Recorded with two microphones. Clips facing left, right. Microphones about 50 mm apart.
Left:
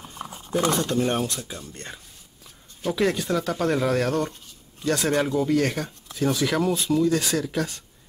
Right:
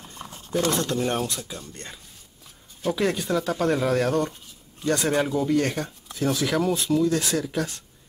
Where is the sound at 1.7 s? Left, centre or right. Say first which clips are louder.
Left 2 dB; centre.